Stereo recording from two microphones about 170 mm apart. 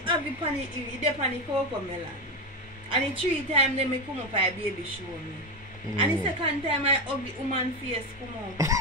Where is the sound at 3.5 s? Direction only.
35° right (ahead or behind).